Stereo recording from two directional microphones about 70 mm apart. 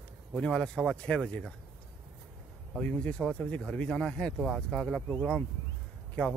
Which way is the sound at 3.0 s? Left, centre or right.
Centre.